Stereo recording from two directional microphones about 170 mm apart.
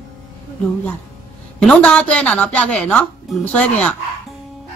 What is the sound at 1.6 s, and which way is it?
Speech, 5° left (ahead or behind).